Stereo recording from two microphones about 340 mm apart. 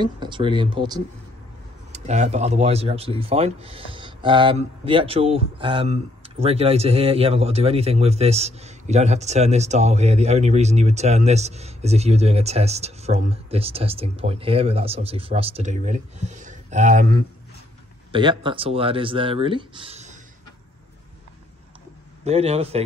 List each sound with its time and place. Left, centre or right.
0.0 s speech: centre
22.2 s a man's voice: centre